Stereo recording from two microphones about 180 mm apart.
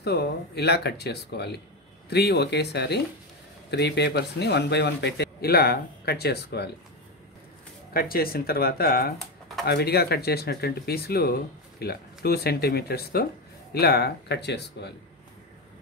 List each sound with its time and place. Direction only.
0.0 s a man's voice: 65° left (ahead or behind)
7.9 s a man's voice: 55° left (ahead or behind)